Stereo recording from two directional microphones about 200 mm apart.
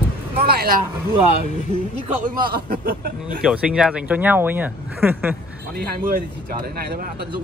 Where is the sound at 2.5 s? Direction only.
50° right (ahead or behind).